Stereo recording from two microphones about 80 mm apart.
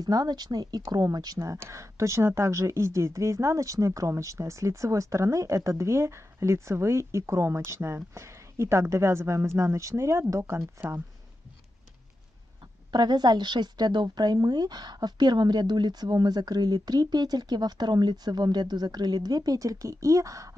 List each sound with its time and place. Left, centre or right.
0.0 s speech: right
1.4 s speech: right
12.9 s speech: right